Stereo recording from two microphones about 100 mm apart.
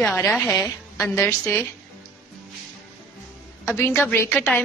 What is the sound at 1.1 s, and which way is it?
Speech, 25° left (ahead or behind).